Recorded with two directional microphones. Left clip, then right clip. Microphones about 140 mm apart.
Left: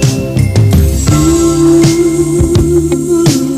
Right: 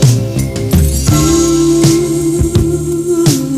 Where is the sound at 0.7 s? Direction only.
20° left (ahead or behind).